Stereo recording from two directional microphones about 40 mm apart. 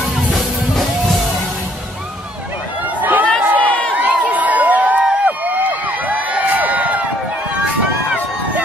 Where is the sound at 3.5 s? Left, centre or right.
Left.